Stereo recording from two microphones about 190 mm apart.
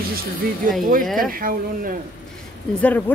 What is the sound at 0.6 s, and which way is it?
Speech, 45° right (ahead or behind).